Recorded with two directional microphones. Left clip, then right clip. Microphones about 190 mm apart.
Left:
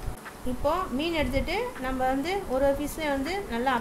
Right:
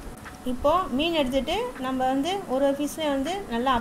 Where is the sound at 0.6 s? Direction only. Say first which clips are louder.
Right 5 dB; 15° right (ahead or behind).